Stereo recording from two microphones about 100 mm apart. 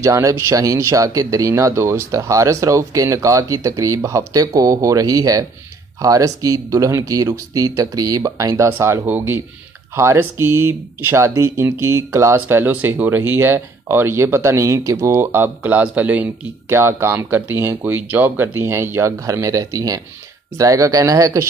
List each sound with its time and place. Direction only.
0.0 s speech: 30° right (ahead or behind)